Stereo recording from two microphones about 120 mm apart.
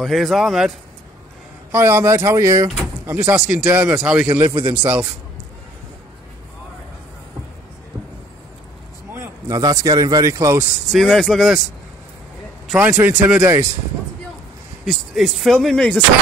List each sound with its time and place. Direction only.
0.0 s speech: centre (ahead or behind)
1.7 s speech: 20° right (ahead or behind)
3.3 s speech: 5° right (ahead or behind)
3.6 s a man's voice: 15° right (ahead or behind)
3.9 s speech: 5° right (ahead or behind)
4.5 s a man's voice: 40° right (ahead or behind)
4.7 s a man's voice: 15° right (ahead or behind)
9.5 s speech: 30° right (ahead or behind)
10.9 s speech: 5° left (ahead or behind)
12.7 s a man's voice: 15° right (ahead or behind)
13.4 s speech: 20° right (ahead or behind)
14.9 s speech: centre (ahead or behind)